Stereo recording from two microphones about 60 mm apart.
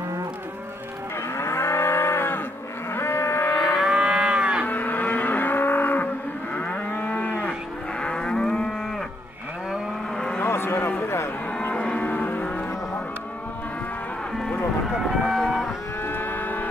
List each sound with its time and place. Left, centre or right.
1.3 s moo: left
2.9 s livestock: left
3.6 s livestock: centre
4.6 s livestock: left
6.5 s moo: left
8.0 s livestock: centre
10.1 s vehicle: centre
10.4 s a sound: left
11.7 s music: centre
15.0 s run: centre
16.1 s livestock: left